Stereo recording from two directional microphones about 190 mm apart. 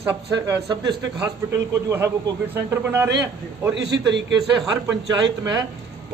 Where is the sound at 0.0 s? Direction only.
15° right (ahead or behind).